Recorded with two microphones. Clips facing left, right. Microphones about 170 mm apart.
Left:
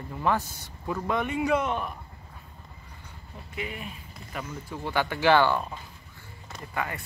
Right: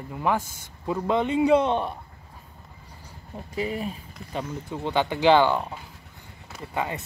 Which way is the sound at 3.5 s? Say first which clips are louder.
Right 8 dB; 35° right (ahead or behind).